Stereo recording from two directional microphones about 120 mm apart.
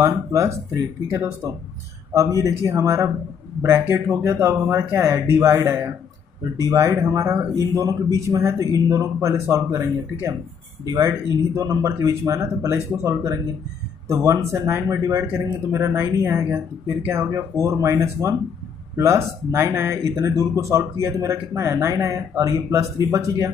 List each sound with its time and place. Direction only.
0.0 s speech: 25° right (ahead or behind)